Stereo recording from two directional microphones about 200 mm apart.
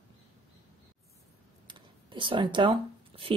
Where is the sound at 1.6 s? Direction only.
25° right (ahead or behind).